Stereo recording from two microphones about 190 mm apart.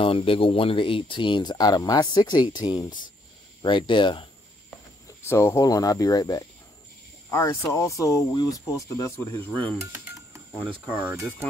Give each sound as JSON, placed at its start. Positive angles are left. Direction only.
{"t": 0.0, "sound": "speech", "side_deg": 30}
{"t": 5.3, "sound": "speech", "side_deg": 15}
{"t": 9.9, "sound": "a sound", "side_deg": -15}
{"t": 10.9, "sound": "speech", "side_deg": -10}